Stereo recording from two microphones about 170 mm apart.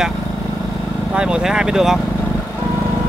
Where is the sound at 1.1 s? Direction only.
5° right (ahead or behind).